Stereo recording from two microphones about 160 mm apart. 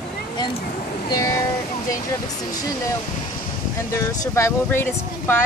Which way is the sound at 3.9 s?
20° left (ahead or behind).